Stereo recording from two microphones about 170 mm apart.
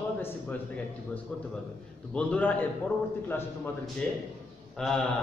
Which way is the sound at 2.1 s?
10° left (ahead or behind).